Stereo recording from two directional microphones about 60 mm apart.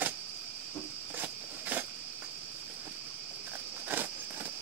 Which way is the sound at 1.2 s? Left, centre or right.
Right.